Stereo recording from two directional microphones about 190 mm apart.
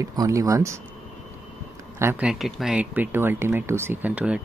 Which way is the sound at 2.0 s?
10° right (ahead or behind).